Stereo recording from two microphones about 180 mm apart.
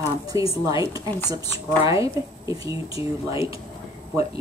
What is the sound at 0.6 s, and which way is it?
A woman's voice, 20° right (ahead or behind).